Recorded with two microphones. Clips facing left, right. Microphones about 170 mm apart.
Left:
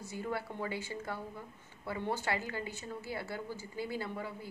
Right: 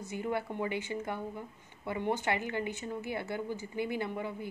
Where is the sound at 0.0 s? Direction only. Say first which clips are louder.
Right 4 dB; 20° right (ahead or behind).